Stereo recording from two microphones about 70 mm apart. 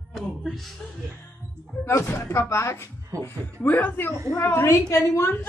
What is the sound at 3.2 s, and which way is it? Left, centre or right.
A woman's voice, left.